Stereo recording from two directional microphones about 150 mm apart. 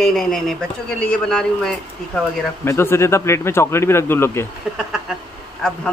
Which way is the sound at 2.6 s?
15° left (ahead or behind).